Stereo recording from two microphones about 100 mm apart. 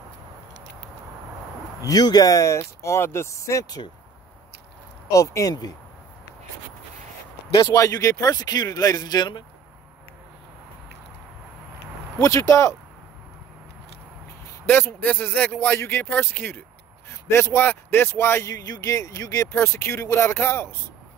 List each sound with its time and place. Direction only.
1.8 s speech: 40° left (ahead or behind)
5.1 s speech: 35° left (ahead or behind)
7.7 s speech: 35° left (ahead or behind)
12.2 s speech: 35° left (ahead or behind)
14.7 s a man's voice: 20° left (ahead or behind)